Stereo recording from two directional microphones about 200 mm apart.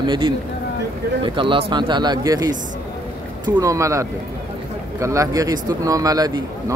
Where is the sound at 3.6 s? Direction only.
15° right (ahead or behind).